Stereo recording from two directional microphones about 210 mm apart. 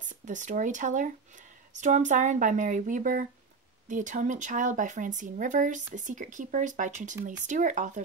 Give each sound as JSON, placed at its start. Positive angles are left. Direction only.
{"t": 0.0, "sound": "speech", "side_deg": -35}